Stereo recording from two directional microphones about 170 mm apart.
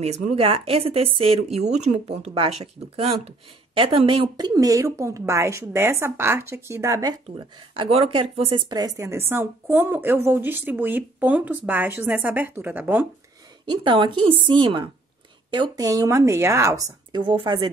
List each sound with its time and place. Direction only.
0.0 s a woman's voice: 40° right (ahead or behind); by 7.2 s 20° right (ahead or behind)
7.2 s a woman's voice: 30° right (ahead or behind); by 13.0 s 10° right (ahead or behind)
13.7 s speech: 30° right (ahead or behind)
17.3 s speech: 25° right (ahead or behind)